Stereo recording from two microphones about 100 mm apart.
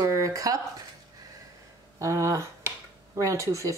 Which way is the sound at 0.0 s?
35° right (ahead or behind).